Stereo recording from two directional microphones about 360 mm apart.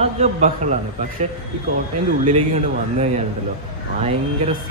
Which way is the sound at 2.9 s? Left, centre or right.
Centre.